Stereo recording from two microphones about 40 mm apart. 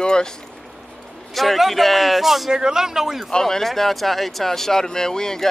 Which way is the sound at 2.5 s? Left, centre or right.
Centre.